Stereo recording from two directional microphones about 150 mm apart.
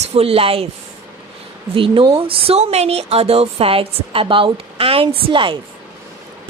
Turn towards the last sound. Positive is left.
turn(degrees=-35)  # may be behind; listen again after turning